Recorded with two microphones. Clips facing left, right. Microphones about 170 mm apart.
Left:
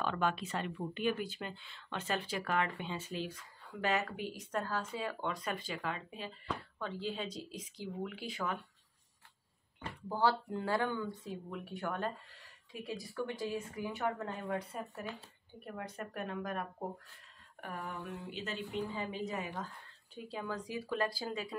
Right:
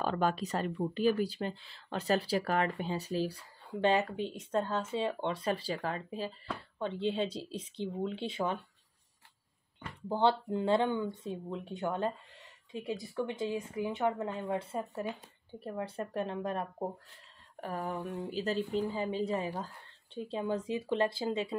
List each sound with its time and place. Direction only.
0.0 s speech: 40° right (ahead or behind)
9.8 s speech: 25° right (ahead or behind)